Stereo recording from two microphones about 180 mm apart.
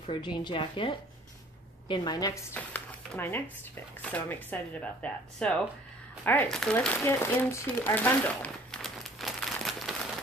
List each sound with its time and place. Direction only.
0.0 s speech: 25° left (ahead or behind)
2.5 s a sound: 10° left (ahead or behind)
4.0 s speech: 10° left (ahead or behind)